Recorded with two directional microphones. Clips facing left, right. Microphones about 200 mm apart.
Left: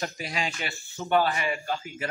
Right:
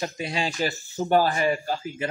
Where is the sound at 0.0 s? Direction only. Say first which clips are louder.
Right 4 dB; 25° right (ahead or behind).